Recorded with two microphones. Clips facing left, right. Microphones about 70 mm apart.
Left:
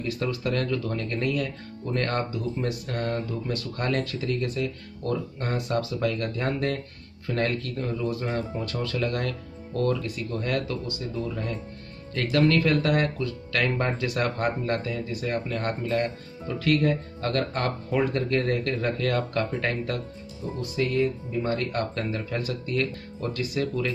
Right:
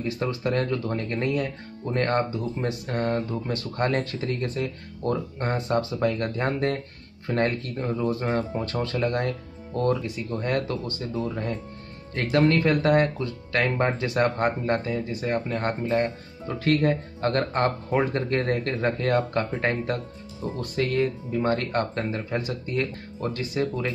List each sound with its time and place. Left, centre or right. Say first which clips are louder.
0.0 s speech: right 1 dB; right
20.7 s speech: even; right
21.9 s speech: right 1 dB; right